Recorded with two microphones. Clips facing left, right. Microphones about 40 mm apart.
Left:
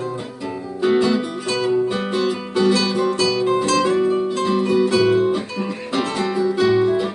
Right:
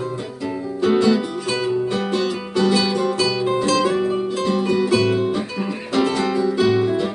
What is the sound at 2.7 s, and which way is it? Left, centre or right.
Music, centre.